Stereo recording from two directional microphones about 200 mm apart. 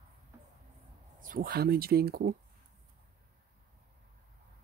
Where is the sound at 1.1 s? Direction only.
45° right (ahead or behind).